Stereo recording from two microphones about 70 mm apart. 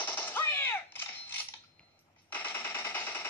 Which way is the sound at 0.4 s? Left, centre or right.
Left.